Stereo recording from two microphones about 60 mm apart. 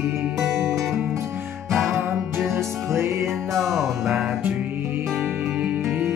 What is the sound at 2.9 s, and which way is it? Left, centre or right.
Music, right.